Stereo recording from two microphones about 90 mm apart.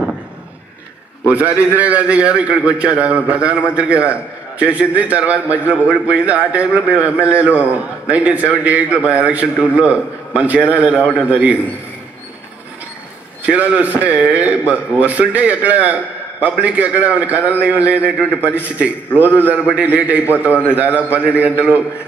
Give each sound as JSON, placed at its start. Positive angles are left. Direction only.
{"t": 1.3, "sound": "a man's voice", "side_deg": -15}
{"t": 13.5, "sound": "a man's voice", "side_deg": -15}